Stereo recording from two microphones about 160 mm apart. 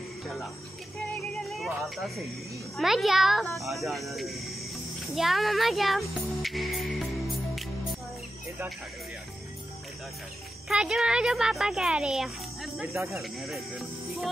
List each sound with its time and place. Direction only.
1.6 s speech: centre (ahead or behind)
10.7 s speech: 5° right (ahead or behind)
12.8 s speech: 20° right (ahead or behind)
13.2 s speech: centre (ahead or behind)